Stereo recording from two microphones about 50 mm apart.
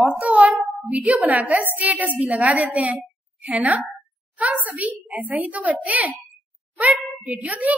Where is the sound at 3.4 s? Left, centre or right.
Right.